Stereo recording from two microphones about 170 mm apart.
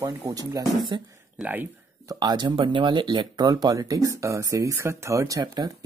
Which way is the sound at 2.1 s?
25° right (ahead or behind).